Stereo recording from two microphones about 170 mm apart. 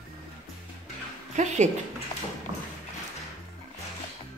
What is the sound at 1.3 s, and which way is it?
Speech, 45° right (ahead or behind).